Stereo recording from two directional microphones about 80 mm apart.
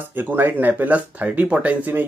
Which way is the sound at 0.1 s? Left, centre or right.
Right.